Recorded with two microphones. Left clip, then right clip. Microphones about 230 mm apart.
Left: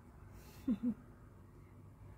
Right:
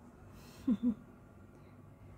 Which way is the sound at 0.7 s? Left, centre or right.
Right.